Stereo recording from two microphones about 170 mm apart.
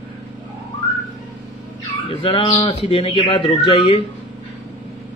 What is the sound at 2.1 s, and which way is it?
Speech, 30° left (ahead or behind).